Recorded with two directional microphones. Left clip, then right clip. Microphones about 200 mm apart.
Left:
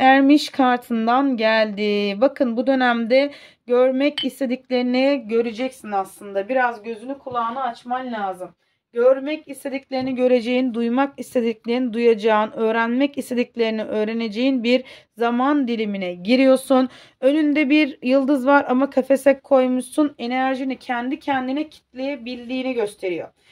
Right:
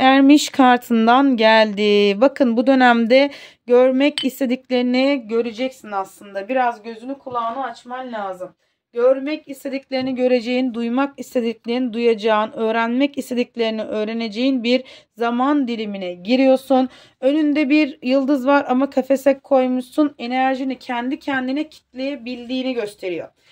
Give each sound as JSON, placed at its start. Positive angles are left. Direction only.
{"t": 0.0, "sound": "speech", "side_deg": -20}
{"t": 8.9, "sound": "a woman's voice", "side_deg": -10}